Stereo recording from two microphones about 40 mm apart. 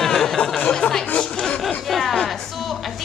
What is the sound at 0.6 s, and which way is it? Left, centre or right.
Speech, left.